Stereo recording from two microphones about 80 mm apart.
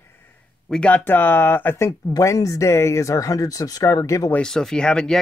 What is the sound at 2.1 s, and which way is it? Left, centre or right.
Speech, left.